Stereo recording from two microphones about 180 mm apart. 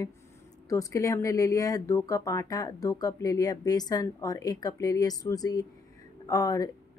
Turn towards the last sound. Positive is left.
turn(degrees=20)  # may be behind; listen again after turning